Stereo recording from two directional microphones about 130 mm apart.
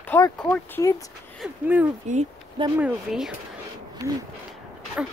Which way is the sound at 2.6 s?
40° right (ahead or behind).